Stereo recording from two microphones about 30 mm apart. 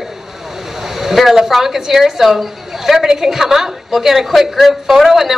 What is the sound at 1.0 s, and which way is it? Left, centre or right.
A woman's voice, centre.